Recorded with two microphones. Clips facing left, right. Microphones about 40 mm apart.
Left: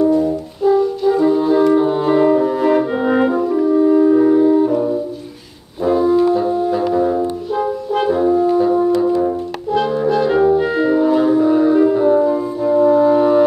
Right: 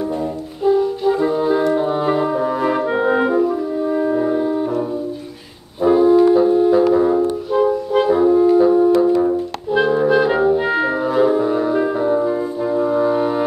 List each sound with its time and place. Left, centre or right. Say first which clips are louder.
0.7 s french horn: left 2 dB; centre
2.3 s music: left 4 dB; centre
3.3 s french horn: right 1 dB; centre
3.8 s music: left 6 dB; centre
5.9 s brass instrument: right 2 dB; centre
6.2 s music: right 3 dB; centre
6.9 s french horn: right 1 dB; centre
9.1 s brass instrument: right 1 dB; centre
9.8 s music: right 2 dB; centre
10.4 s clarinet: left 2 dB; centre
11.1 s music: even; centre
12.0 s music: left 4 dB; centre
12.3 s french horn: left 3 dB; centre